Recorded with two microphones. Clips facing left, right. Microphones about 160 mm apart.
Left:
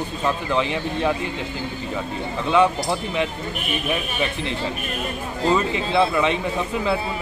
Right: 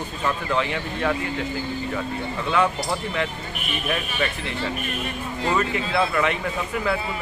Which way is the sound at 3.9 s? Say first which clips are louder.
Even; 15° left (ahead or behind).